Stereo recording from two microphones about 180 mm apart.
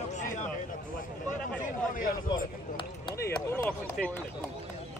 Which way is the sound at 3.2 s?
15° left (ahead or behind).